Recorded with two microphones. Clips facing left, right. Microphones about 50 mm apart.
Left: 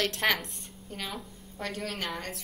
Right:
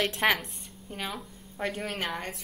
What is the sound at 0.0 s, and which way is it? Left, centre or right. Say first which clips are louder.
Speech: right 2 dB; centre.